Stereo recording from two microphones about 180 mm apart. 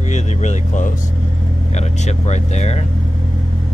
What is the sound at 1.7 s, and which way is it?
Speech, 40° left (ahead or behind).